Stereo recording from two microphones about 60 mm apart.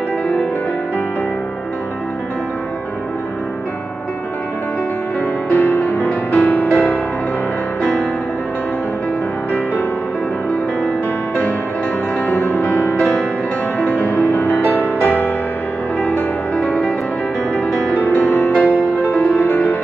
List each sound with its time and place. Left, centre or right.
5.5 s music: left
7.8 s music: centre
12.3 s music: left
14.1 s music: left
17.9 s music: left